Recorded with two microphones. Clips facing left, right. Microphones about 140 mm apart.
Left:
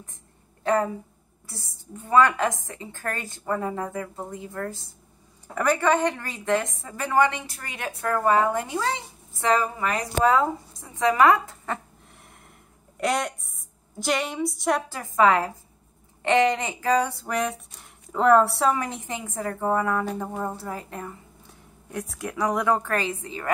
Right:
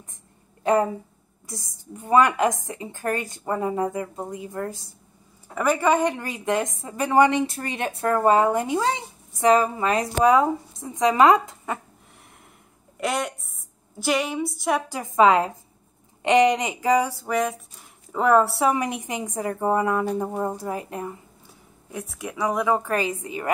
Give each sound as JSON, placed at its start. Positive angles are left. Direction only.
{"t": 1.5, "sound": "a woman's voice", "side_deg": -15}
{"t": 13.0, "sound": "a woman's voice", "side_deg": 0}
{"t": 14.9, "sound": "a woman's voice", "side_deg": -15}
{"t": 17.2, "sound": "speech", "side_deg": 0}
{"t": 18.7, "sound": "a woman's voice", "side_deg": -15}
{"t": 21.9, "sound": "a woman's voice", "side_deg": 0}